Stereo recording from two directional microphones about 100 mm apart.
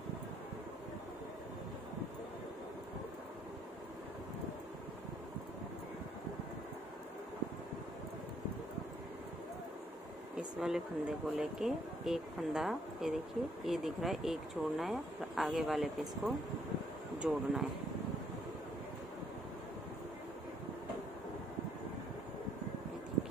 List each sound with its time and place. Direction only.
10.3 s speech: 5° right (ahead or behind)